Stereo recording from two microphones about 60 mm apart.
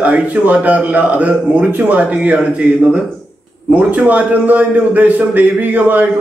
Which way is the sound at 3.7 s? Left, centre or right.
Right.